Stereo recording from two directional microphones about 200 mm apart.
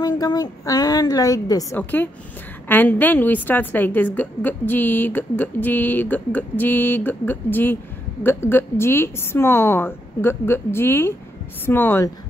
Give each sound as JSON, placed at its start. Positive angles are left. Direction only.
{"t": 0.0, "sound": "speech", "side_deg": 20}